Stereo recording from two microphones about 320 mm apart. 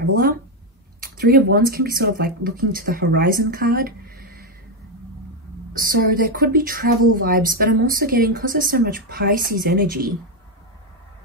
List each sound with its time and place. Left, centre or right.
0.0 s a woman's voice: right
5.7 s a woman's voice: right